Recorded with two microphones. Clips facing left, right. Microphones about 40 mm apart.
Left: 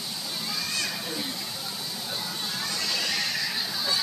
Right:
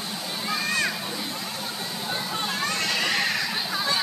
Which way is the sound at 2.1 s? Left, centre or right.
Right.